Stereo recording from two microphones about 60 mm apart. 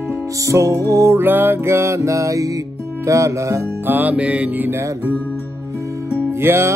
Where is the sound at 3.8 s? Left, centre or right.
Right.